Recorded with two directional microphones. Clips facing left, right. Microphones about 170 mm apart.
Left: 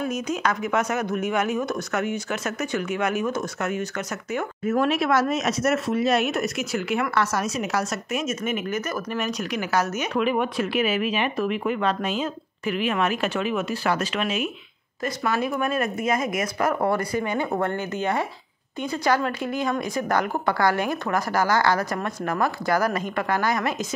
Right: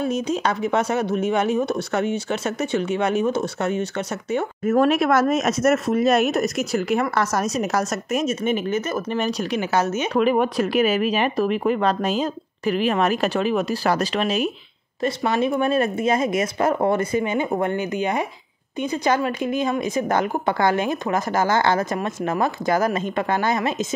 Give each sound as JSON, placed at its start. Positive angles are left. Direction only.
{"t": 0.0, "sound": "a woman's voice", "side_deg": -30}
{"t": 4.6, "sound": "speech", "side_deg": -50}
{"t": 10.1, "sound": "a woman's voice", "side_deg": -40}